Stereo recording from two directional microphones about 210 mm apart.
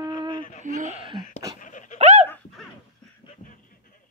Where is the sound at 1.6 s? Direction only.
35° left (ahead or behind).